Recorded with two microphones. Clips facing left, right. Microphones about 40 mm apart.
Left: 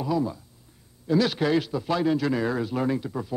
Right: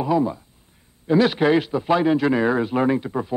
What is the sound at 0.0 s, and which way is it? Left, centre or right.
Speech, right.